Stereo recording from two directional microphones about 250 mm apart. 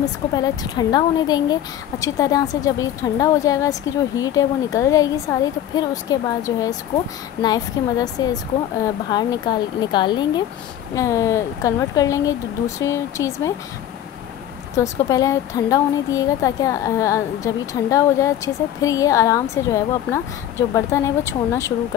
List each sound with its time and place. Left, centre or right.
0.0 s speech: centre
14.8 s speech: centre